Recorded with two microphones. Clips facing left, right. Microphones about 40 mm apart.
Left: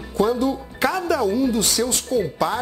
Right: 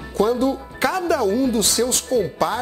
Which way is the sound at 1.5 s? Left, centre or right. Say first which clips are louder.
Right 1 dB; right.